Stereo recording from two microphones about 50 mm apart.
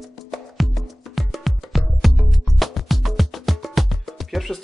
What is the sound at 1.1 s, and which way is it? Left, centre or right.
Music, centre.